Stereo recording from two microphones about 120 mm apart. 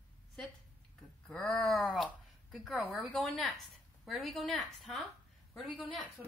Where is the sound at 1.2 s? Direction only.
5° left (ahead or behind).